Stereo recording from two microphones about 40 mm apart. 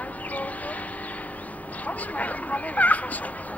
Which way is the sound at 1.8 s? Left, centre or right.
Left.